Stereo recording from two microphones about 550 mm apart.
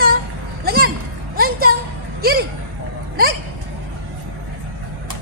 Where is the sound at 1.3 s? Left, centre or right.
Centre.